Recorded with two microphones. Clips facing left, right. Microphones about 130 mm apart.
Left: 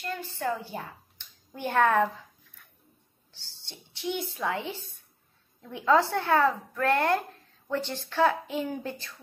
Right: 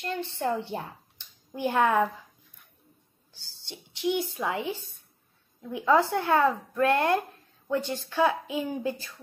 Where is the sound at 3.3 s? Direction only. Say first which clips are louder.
Right 5 dB; 15° right (ahead or behind).